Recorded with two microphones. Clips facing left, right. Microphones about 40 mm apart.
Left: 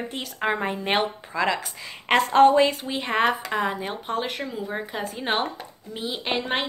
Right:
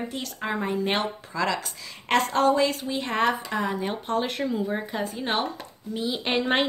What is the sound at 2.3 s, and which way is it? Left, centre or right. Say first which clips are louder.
Speech: left 7 dB; left.